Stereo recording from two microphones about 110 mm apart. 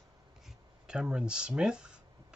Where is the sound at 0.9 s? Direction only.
10° right (ahead or behind).